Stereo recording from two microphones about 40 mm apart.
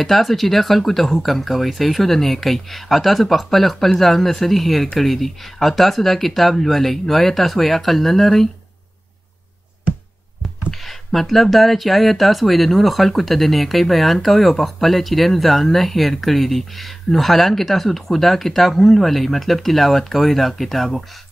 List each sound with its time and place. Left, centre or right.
0.0 s speech: centre
10.7 s speech: centre